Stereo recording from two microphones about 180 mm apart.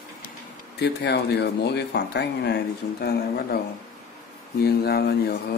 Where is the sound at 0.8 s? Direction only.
65° left (ahead or behind).